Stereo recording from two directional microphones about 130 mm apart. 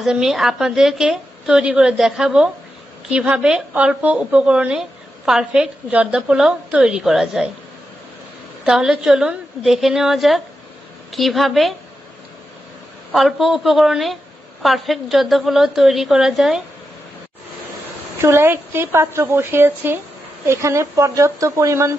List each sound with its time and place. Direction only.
0.0 s a woman's voice: 5° right (ahead or behind)
8.6 s a woman's voice: 5° right (ahead or behind)
13.1 s a woman's voice: centre (ahead or behind)
18.2 s speech: 20° right (ahead or behind)